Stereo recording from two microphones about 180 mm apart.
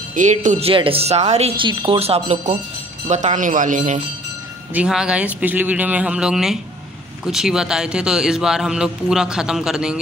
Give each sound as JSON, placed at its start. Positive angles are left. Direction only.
{"t": 0.1, "sound": "speech", "side_deg": -45}
{"t": 4.7, "sound": "speech", "side_deg": -5}